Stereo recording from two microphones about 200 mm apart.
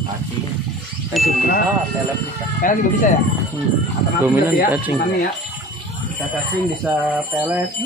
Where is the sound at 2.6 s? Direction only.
40° left (ahead or behind).